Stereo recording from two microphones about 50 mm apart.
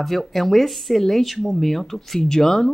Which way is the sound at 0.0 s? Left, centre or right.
Centre.